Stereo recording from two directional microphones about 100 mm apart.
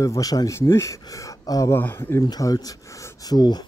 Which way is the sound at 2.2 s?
40° left (ahead or behind).